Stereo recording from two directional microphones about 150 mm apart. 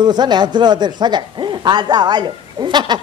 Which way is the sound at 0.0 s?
30° right (ahead or behind).